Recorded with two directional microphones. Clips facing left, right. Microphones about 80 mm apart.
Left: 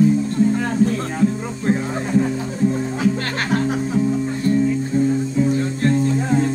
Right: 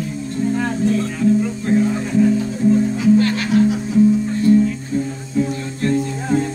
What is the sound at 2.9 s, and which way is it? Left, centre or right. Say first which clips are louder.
Music: right 6 dB; left.